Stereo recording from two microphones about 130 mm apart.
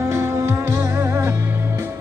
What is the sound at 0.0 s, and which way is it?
Music, 20° right (ahead or behind).